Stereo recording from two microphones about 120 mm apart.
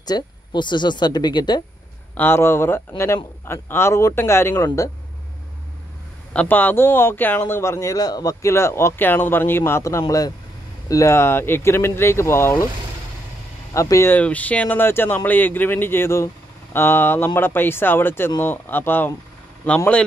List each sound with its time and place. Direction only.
0.0 s speech: 35° left (ahead or behind)
2.1 s speech: 20° left (ahead or behind)
6.3 s speech: 15° left (ahead or behind)
13.7 s speech: 25° left (ahead or behind)
14.1 s speech: 10° left (ahead or behind)